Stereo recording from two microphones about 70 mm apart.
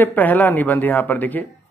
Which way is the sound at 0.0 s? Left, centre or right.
Left.